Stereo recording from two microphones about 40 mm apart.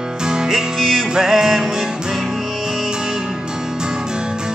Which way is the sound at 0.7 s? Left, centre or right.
Centre.